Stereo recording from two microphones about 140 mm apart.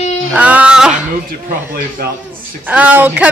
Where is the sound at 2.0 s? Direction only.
90° right.